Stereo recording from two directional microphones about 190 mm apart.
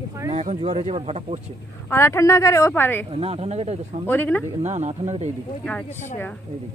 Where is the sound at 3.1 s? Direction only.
30° right (ahead or behind).